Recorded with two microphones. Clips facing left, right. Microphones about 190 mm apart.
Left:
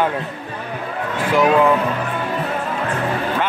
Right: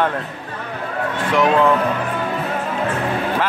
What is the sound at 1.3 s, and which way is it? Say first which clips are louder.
Speech: left 1 dB; 5° left (ahead or behind).